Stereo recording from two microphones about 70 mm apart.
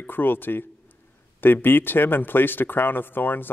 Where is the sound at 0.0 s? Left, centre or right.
Left.